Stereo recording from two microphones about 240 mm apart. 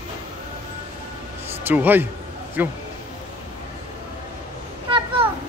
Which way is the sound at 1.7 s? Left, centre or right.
Centre.